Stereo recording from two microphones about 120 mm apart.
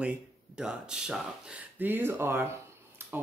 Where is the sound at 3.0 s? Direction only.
20° right (ahead or behind).